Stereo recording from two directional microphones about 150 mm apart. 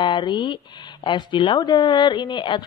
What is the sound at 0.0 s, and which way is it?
Speech, 30° left (ahead or behind).